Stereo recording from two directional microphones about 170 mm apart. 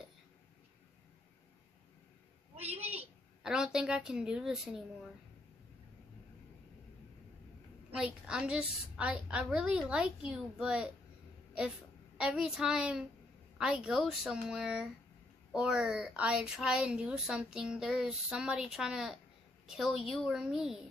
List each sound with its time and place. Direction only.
2.5 s a sound: 35° right (ahead or behind)
3.0 s a woman's voice: 5° right (ahead or behind)
7.9 s a woman's voice: 5° right (ahead or behind)
12.2 s a woman's voice: 5° right (ahead or behind)